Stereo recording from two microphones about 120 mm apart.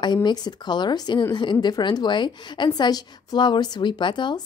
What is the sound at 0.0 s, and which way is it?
A woman's voice, 40° left (ahead or behind).